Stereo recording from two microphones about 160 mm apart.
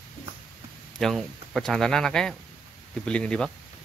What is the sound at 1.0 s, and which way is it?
Speech, centre (ahead or behind).